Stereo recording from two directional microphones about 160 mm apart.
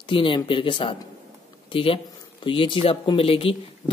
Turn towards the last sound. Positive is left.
turn(degrees=35)  # may be behind; listen again after turning